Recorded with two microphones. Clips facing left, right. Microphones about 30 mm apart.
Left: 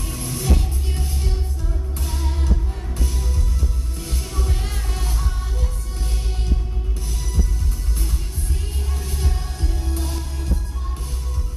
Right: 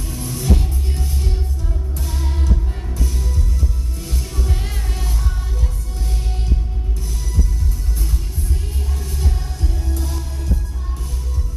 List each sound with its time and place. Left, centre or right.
0.0 s music: centre
2.0 s music: centre
9.2 s music: centre